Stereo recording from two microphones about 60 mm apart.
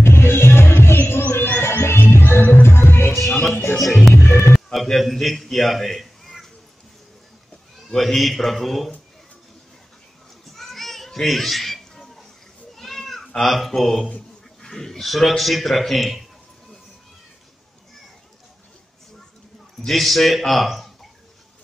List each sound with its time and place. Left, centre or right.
0.0 s music: left
0.9 s heart sounds: left
1.6 s music: left
3.1 s music: centre
4.1 s music: left
4.7 s a man's voice: centre
7.9 s a man's voice: centre
10.5 s children playing: centre
12.7 s cat: centre
14.6 s a man's voice: centre
19.8 s a man's voice: centre